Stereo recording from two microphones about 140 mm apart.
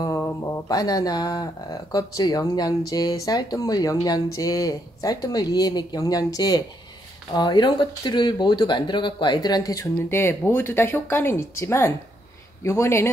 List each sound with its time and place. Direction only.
0.4 s speech: 25° left (ahead or behind)